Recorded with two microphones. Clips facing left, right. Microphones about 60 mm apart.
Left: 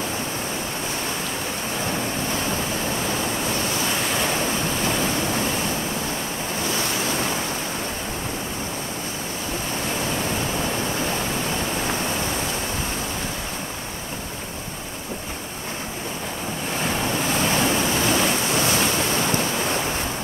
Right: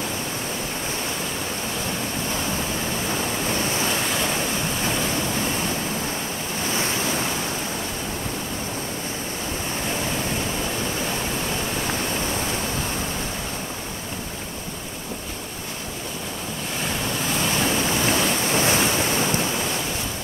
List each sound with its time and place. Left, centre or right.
4.1 s waves: centre
17.5 s waves: left
18.5 s waves: right
18.8 s waves: centre